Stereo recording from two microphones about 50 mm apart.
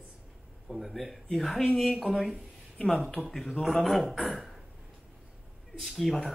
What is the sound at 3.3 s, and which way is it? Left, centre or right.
A man's voice, centre.